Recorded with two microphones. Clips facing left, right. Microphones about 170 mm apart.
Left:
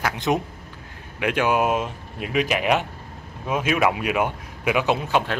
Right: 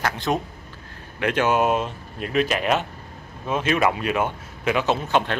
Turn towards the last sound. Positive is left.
turn(degrees=10)  # may be behind; listen again after turning